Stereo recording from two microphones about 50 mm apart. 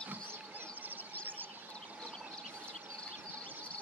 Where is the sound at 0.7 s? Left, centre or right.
Right.